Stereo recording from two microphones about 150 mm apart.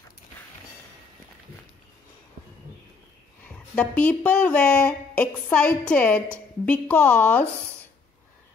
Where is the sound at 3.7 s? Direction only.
10° left (ahead or behind).